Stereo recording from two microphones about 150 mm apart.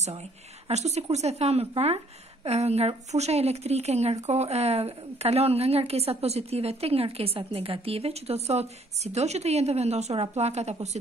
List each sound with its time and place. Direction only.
0.7 s speech: 45° right (ahead or behind)